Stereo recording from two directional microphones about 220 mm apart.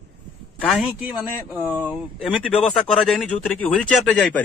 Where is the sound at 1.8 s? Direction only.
Centre (ahead or behind).